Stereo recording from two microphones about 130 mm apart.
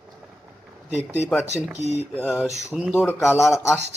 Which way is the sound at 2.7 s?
5° right (ahead or behind).